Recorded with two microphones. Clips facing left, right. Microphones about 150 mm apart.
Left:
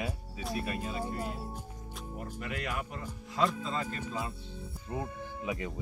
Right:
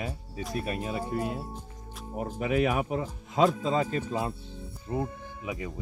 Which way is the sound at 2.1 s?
70° right (ahead or behind).